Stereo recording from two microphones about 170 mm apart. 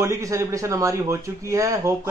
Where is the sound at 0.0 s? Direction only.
20° right (ahead or behind).